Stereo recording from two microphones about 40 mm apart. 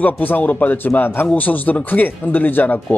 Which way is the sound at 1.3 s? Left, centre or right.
Left.